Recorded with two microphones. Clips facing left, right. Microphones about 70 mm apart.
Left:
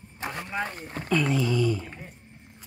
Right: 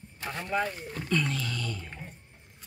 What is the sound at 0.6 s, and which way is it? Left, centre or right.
Speech, left.